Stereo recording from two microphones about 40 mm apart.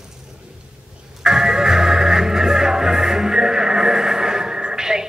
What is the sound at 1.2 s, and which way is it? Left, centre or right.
Music, centre.